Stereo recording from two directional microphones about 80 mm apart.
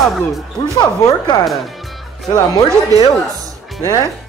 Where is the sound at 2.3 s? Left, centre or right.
Left.